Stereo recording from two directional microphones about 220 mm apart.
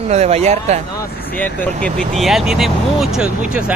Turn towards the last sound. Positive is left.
turn(degrees=-5)  # may be behind; listen again after turning